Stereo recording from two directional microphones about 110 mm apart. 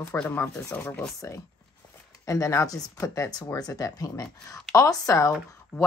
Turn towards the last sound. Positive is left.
turn(degrees=25)  # may be behind; listen again after turning